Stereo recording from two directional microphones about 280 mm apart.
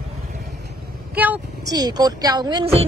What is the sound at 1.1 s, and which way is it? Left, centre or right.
A woman's voice, centre.